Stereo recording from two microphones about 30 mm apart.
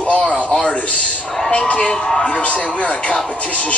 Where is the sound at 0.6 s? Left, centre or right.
Left.